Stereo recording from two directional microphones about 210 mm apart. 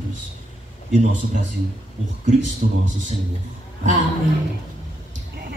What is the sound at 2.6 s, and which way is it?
Speech, 40° right (ahead or behind).